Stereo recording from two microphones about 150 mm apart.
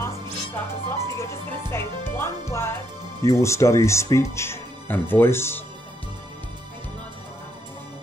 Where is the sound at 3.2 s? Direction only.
20° left (ahead or behind).